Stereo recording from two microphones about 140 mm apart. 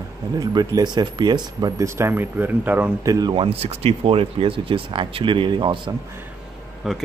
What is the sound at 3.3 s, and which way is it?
Speech, 40° right (ahead or behind).